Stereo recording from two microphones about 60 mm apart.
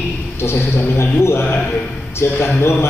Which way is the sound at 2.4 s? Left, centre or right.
Left.